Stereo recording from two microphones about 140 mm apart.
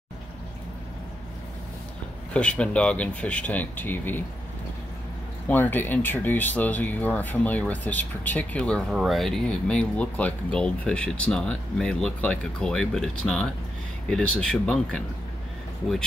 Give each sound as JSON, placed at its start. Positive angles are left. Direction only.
{"t": 2.3, "sound": "speech", "side_deg": 10}
{"t": 5.5, "sound": "speech", "side_deg": 15}